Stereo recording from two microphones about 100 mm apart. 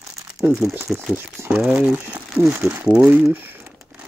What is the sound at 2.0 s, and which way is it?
Speech, 25° right (ahead or behind).